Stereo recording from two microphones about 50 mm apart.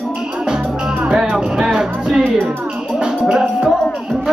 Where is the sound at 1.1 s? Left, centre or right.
Centre.